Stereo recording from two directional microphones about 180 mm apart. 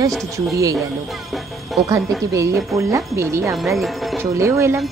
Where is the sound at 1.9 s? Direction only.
15° right (ahead or behind).